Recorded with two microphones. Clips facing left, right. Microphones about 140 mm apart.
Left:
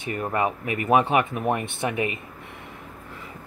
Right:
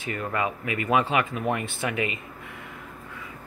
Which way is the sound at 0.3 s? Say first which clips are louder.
Left 3 dB; 30° left (ahead or behind).